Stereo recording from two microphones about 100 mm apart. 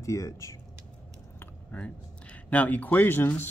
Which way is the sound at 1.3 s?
15° left (ahead or behind).